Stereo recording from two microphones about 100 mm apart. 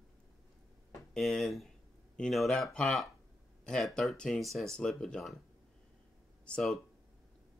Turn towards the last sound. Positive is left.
turn(degrees=5)  # may be behind; listen again after turning